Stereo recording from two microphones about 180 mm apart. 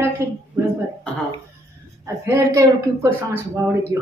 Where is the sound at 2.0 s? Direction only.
15° right (ahead or behind).